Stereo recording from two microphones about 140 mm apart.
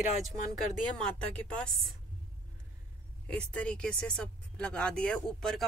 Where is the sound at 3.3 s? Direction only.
5° left (ahead or behind).